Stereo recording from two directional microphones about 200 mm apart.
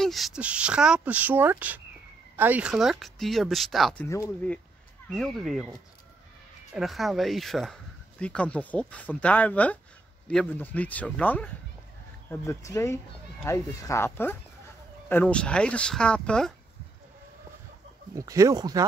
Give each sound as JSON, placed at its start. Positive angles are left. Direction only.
{"t": 0.0, "sound": "speech", "side_deg": 0}
{"t": 4.0, "sound": "speech", "side_deg": 10}
{"t": 6.7, "sound": "speech", "side_deg": 0}
{"t": 18.1, "sound": "speech", "side_deg": -15}